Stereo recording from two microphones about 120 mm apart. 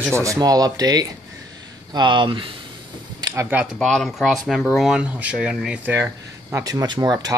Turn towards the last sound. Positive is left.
turn(degrees=-30)  # may be behind; listen again after turning